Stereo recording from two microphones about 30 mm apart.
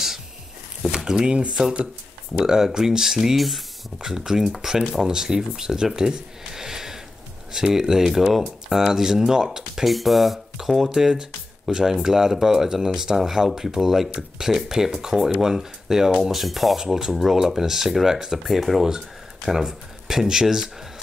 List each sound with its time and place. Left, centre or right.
1.2 s speech: right
2.3 s speech: centre
3.3 s speech: centre
4.3 s speech: centre
9.8 s speech: centre
16.2 s speech: centre
16.8 s speech: centre
18.4 s speech: centre
20.1 s speech: centre